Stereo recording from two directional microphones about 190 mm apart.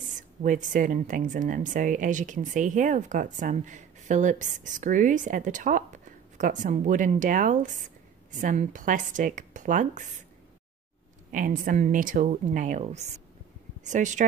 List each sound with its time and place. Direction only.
0.4 s speech: 45° right (ahead or behind)
11.3 s speech: 45° right (ahead or behind)